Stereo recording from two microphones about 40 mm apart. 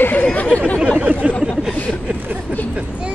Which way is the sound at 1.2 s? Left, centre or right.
Right.